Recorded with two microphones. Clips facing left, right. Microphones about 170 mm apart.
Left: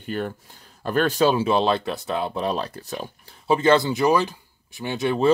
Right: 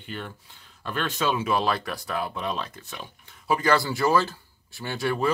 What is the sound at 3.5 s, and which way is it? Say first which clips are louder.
Speech: left 5 dB; 25° left (ahead or behind).